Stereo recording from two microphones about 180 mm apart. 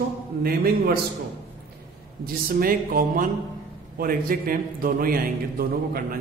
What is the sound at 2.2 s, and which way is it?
A man's voice, 55° right (ahead or behind).